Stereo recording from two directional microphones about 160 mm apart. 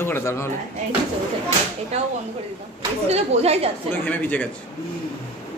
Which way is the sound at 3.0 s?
40° right (ahead or behind).